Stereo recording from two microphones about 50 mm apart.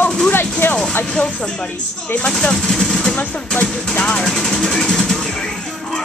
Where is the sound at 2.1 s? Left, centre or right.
Centre.